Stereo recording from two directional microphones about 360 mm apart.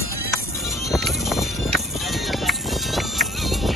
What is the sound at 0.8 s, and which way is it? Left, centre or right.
Music, centre.